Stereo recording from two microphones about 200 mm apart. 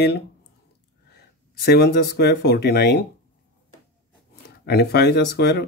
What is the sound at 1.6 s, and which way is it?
Speech, 50° left (ahead or behind).